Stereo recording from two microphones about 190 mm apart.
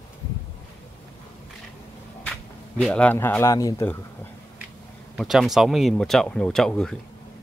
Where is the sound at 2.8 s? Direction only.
5° left (ahead or behind).